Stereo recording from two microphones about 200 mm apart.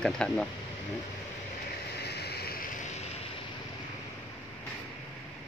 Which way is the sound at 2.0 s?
55° left (ahead or behind).